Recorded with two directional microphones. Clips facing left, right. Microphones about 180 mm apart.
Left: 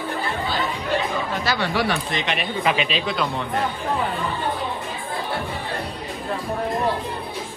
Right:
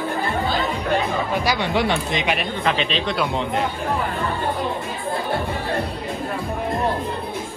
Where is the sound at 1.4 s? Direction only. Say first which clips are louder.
Even; 15° right (ahead or behind).